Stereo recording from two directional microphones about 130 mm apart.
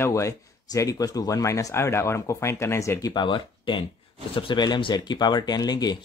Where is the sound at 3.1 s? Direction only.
35° left (ahead or behind).